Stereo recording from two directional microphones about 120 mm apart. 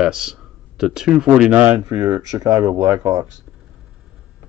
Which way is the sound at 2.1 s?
30° right (ahead or behind).